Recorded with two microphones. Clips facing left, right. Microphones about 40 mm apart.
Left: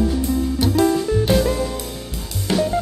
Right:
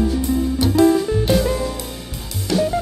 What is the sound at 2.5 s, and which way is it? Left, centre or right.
Music, left.